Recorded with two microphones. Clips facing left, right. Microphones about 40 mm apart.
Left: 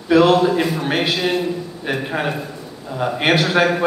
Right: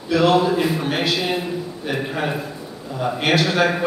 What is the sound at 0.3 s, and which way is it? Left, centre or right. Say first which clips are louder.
Speech: left 2 dB; centre.